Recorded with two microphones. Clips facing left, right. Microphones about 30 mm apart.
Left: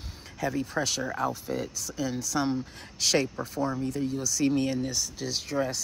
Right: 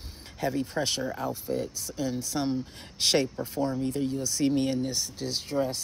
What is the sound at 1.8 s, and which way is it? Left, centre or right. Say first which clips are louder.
Speech: even; centre.